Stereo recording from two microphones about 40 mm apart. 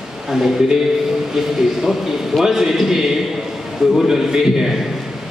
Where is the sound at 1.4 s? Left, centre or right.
Centre.